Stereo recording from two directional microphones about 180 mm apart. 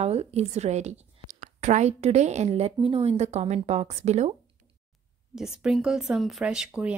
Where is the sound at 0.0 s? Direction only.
35° right (ahead or behind).